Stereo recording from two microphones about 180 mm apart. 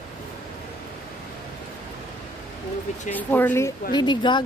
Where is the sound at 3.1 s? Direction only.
10° left (ahead or behind).